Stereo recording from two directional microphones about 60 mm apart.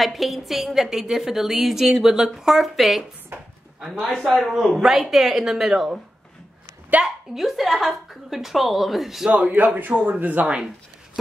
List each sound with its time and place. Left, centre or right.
0.0 s a woman's voice: centre
3.3 s a sound: right
4.4 s a woman's voice: centre
7.3 s a woman's voice: centre
9.3 s a man's voice: right